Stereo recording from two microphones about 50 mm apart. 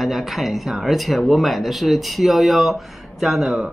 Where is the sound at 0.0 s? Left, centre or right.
Centre.